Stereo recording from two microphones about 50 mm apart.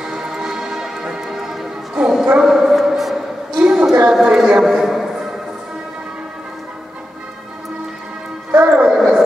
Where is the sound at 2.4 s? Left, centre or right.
Centre.